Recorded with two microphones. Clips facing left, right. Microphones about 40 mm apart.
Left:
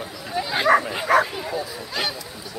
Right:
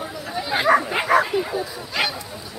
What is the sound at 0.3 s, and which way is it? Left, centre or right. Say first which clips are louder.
Bow-wow: even; centre.